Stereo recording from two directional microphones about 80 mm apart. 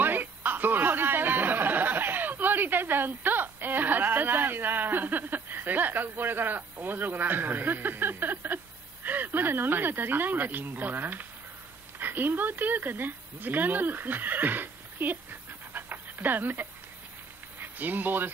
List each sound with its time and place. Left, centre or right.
0.0 s speech: right
15.7 s dog: right
17.6 s speech: right